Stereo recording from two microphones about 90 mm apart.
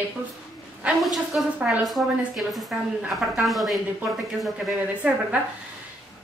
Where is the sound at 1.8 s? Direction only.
Centre (ahead or behind).